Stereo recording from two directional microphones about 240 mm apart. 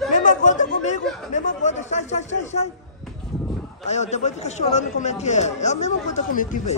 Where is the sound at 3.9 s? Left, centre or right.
Left.